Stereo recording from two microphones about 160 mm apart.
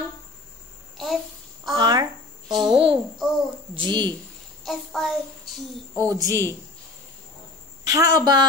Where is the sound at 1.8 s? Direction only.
25° right (ahead or behind).